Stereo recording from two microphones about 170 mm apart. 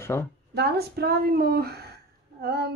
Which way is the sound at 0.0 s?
15° left (ahead or behind).